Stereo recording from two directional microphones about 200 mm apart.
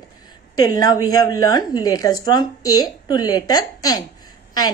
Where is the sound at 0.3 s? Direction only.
20° left (ahead or behind).